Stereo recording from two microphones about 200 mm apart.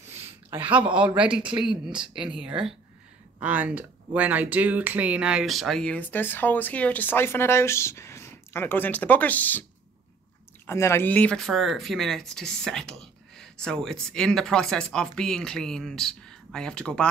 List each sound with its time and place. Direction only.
0.5 s speech: 10° right (ahead or behind); by 9.7 s 10° left (ahead or behind)
10.7 s speech: 10° left (ahead or behind)